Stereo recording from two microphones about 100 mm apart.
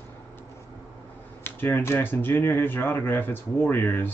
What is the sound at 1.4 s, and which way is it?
Speech, 20° left (ahead or behind).